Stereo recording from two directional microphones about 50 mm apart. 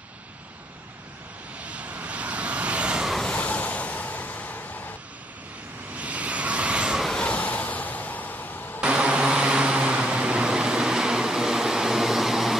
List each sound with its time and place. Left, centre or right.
1.6 s vehicle: right
3.3 s vehicle: left
5.9 s vehicle: right
7.2 s vehicle: left
8.8 s vehicle: right; by 12.5 s centre